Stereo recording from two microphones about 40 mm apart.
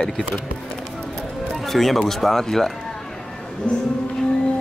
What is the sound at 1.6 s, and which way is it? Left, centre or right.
A man's voice, centre.